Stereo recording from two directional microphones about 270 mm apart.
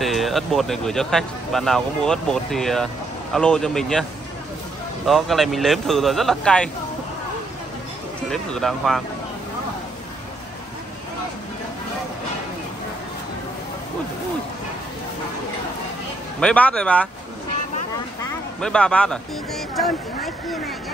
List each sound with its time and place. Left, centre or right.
0.0 s speech: centre
5.0 s speech: centre
8.3 s speech: centre
16.3 s speech: centre
18.6 s speech: centre